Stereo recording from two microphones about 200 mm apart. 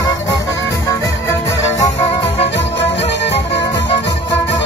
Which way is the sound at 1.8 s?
20° left (ahead or behind).